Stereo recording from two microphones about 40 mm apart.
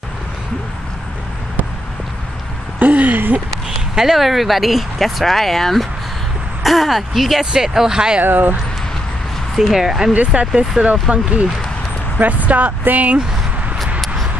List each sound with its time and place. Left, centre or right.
2.8 s speech: right
3.9 s speech: centre
8.2 s speech: right
9.8 s speech: centre
10.3 s speech: right
10.8 s speech: centre
12.2 s speech: right
14.0 s a sound: centre